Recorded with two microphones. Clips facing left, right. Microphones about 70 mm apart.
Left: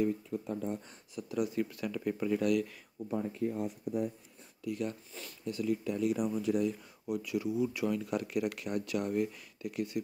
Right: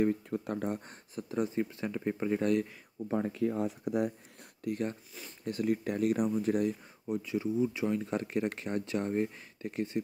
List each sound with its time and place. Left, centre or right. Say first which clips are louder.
0.0 s speech: right 2 dB; right
0.7 s speech: right 1 dB; right
3.1 s speech: right 3 dB; right
4.6 s speech: right 2 dB; right
7.2 s speech: right 2 dB; right